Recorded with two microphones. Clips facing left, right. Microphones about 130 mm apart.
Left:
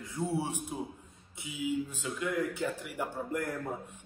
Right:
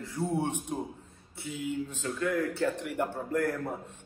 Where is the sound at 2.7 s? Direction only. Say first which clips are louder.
Right 4 dB; centre (ahead or behind).